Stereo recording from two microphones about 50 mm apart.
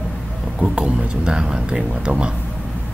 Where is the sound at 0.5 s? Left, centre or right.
Centre.